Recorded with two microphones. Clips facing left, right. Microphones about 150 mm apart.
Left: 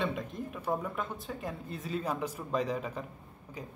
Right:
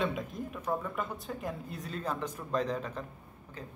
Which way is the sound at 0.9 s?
Centre (ahead or behind).